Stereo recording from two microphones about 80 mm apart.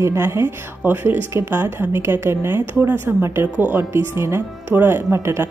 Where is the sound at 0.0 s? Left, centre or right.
Right.